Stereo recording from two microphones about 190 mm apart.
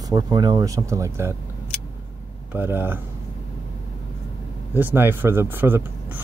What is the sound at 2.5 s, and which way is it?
Speech, 10° right (ahead or behind).